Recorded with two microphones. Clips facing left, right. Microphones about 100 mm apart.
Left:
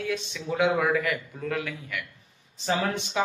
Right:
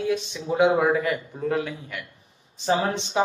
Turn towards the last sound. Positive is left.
turn(degrees=-30)  # may be behind; listen again after turning